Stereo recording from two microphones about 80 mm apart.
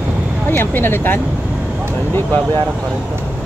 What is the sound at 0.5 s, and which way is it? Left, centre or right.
Speech, left.